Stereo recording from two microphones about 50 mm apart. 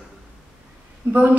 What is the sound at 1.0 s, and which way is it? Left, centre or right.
Speech, right.